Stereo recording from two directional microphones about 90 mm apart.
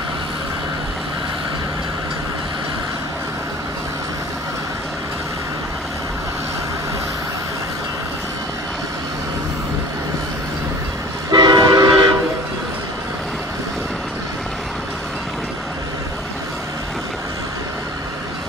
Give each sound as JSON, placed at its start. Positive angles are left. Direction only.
{"t": 11.3, "sound": "train", "side_deg": -50}